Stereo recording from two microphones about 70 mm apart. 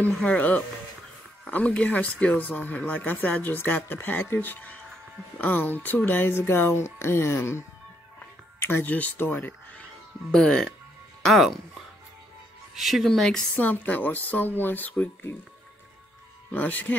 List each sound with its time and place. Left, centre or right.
0.0 s speech: left
10.3 s speech: centre
12.7 s speech: centre
13.6 s speech: left
16.5 s speech: left